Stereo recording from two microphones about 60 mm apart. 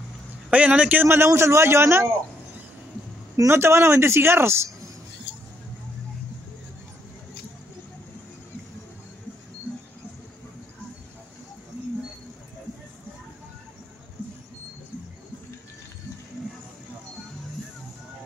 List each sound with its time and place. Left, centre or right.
0.5 s speech: right
1.1 s speech: right
3.4 s speech: right